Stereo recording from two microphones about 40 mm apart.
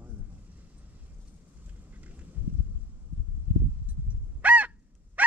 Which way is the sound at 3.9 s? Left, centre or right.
Right.